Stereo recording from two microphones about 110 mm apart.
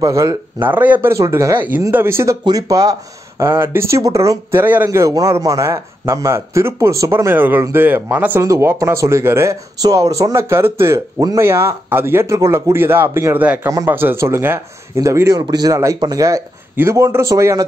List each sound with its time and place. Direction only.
0.0 s speech: 30° right (ahead or behind)
0.6 s speech: 15° right (ahead or behind)
1.1 s speech: 25° right (ahead or behind)
2.4 s speech: 35° right (ahead or behind); by 4.8 s 15° right (ahead or behind)
4.8 s speech: 30° right (ahead or behind)